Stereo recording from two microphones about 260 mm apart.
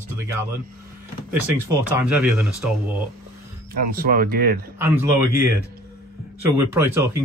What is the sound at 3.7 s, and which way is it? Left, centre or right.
Speech, right.